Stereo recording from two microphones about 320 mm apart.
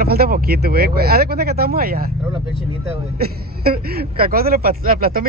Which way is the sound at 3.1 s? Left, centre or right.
Right.